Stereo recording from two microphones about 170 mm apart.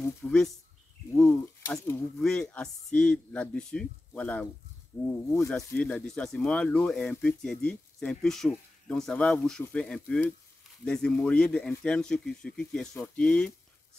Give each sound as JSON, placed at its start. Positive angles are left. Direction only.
{"t": 0.2, "sound": "speech", "side_deg": 5}
{"t": 5.8, "sound": "speech", "side_deg": 5}